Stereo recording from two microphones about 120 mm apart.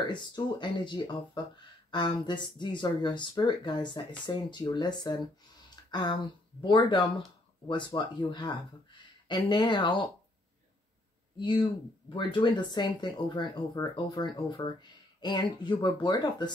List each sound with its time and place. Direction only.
0.0 s speech: 40° left (ahead or behind)
11.3 s speech: 45° left (ahead or behind)